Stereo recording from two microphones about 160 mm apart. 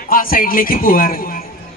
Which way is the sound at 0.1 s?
60° left (ahead or behind).